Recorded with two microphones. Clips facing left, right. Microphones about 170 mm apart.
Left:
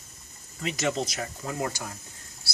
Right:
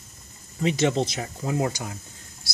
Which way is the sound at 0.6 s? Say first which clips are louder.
Right 6 dB; 25° right (ahead or behind).